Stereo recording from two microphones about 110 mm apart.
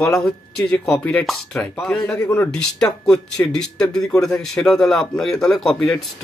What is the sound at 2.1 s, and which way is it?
Speech, 25° left (ahead or behind).